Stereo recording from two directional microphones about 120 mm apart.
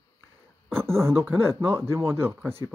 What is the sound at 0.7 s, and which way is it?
Speech, 20° right (ahead or behind).